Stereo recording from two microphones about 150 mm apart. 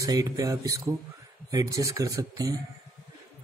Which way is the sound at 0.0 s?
20° right (ahead or behind).